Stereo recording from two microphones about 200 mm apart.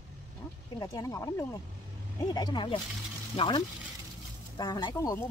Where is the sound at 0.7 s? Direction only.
15° left (ahead or behind).